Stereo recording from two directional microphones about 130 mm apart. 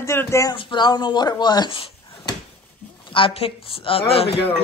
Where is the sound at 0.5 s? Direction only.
35° left (ahead or behind).